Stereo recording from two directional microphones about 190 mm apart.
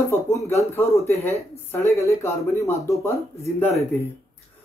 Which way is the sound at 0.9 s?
15° left (ahead or behind).